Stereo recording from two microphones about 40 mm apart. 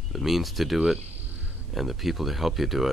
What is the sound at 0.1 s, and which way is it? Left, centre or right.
Speech, centre.